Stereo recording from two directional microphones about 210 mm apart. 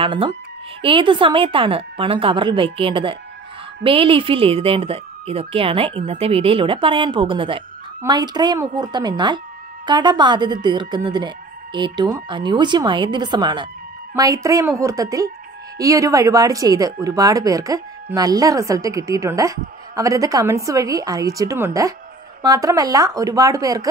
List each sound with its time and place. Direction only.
0.0 s speech: 25° right (ahead or behind)